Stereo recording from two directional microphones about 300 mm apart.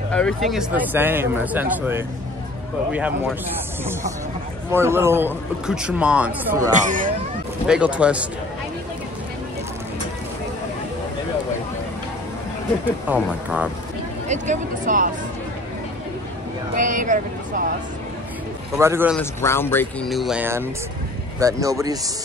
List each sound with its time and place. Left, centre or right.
0.1 s speech: centre
4.6 s speech: centre
6.7 s speech: right
7.6 s speech: centre
12.8 s speech: centre
14.2 s speech: right
16.7 s speech: right
18.8 s speech: centre
19.1 s speech: centre